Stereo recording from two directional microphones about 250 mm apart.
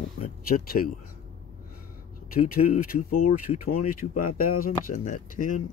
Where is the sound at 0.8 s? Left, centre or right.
Left.